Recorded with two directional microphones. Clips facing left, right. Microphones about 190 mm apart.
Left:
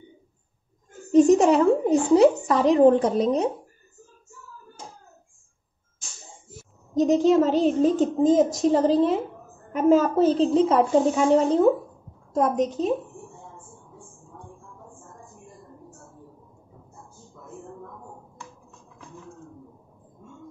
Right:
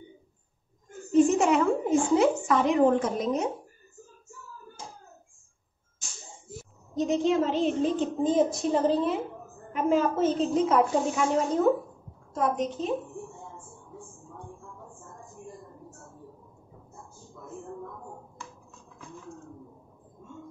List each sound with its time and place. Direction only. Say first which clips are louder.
1.1 s a child's voice: left 5 dB; 40° left (ahead or behind)
7.0 s a woman's voice: left 6 dB; 40° left (ahead or behind)
12.4 s a woman's voice: left 5 dB; 40° left (ahead or behind)